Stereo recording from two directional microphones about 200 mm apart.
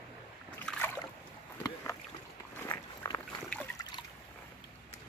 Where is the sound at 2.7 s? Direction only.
20° left (ahead or behind).